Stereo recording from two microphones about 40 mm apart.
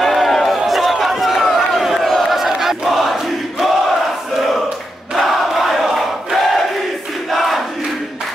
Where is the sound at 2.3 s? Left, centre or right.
Centre.